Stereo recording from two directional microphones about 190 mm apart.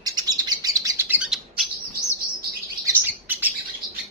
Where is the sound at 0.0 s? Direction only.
20° right (ahead or behind); by 1.7 s 5° right (ahead or behind).